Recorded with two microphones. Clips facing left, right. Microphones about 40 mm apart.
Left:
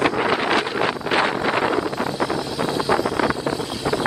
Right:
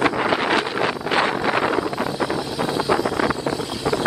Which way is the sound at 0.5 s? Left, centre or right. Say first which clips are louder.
Even; left.